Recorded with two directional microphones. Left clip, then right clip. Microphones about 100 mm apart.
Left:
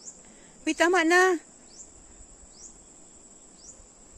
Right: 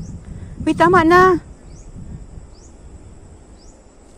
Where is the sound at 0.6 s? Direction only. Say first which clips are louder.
Right 10 dB; 5° left (ahead or behind).